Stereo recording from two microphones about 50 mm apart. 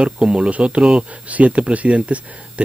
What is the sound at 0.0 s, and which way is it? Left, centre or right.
Speech, right.